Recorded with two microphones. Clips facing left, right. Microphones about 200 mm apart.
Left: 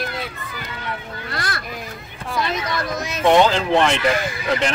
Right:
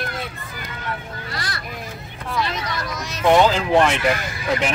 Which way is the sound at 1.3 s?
50° left (ahead or behind).